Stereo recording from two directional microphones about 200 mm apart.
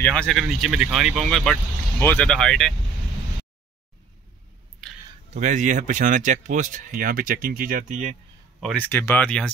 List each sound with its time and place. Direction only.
0.0 s speech: 5° left (ahead or behind)
5.3 s speech: 35° right (ahead or behind)
8.7 s speech: 10° left (ahead or behind)